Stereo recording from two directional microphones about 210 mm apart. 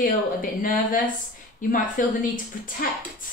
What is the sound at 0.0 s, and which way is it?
Speech, 40° left (ahead or behind).